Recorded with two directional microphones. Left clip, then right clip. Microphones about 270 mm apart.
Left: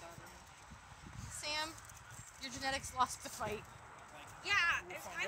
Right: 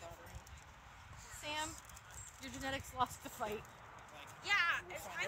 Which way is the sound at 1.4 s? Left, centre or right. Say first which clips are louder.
Left 2 dB; left.